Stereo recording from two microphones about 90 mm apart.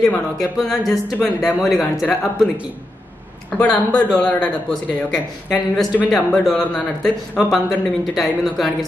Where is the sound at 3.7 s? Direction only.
50° left (ahead or behind).